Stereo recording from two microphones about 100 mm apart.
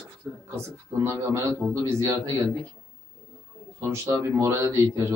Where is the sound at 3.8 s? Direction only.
25° right (ahead or behind).